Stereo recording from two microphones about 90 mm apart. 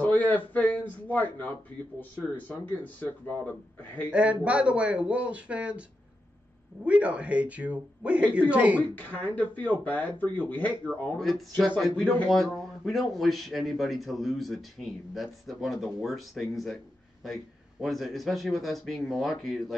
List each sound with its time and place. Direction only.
0.0 s a man's voice: 20° left (ahead or behind)
4.1 s speech: 15° right (ahead or behind)
8.9 s speech: 20° left (ahead or behind)
10.9 s speech: centre (ahead or behind)